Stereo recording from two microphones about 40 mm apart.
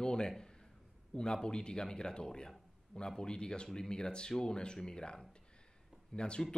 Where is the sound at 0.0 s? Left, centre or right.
Centre.